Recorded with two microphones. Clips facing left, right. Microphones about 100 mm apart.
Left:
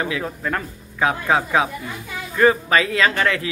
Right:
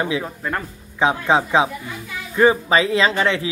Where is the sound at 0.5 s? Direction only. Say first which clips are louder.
Even; 20° right (ahead or behind).